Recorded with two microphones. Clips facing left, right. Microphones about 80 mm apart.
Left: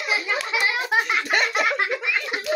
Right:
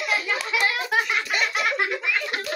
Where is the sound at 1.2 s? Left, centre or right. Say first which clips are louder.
Left 3 dB; left.